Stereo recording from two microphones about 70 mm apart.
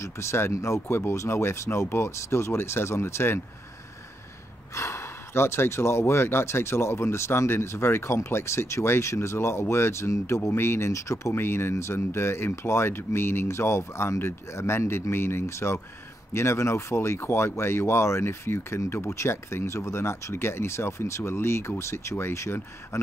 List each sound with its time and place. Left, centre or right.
0.0 s speech: left
4.7 s speech: left